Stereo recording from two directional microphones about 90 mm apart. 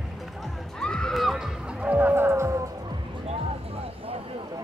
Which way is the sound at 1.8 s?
15° right (ahead or behind).